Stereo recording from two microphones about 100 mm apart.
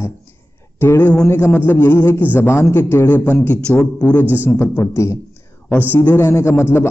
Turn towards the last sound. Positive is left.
turn(degrees=25)  # may be behind; listen again after turning